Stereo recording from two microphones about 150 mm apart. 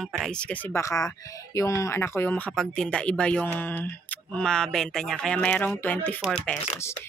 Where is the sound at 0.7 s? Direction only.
20° left (ahead or behind).